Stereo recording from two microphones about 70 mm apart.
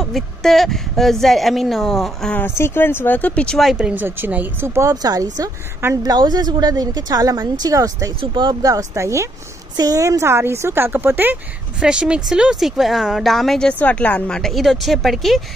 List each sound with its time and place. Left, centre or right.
0.0 s a woman's voice: centre
2.4 s speech: left
3.5 s a woman's voice: centre
3.8 s speech: right
4.6 s speech: right
5.0 s a woman's voice: right
6.0 s a woman's voice: right
8.4 s speech: right
8.7 s speech: right
9.8 s speech: right
11.8 s a woman's voice: centre
13.7 s a woman's voice: centre
14.4 s a woman's voice: centre